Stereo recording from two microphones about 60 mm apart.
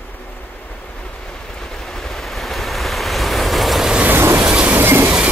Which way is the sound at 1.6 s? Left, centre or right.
Centre.